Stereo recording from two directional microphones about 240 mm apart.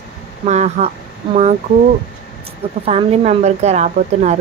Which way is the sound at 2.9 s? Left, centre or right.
Right.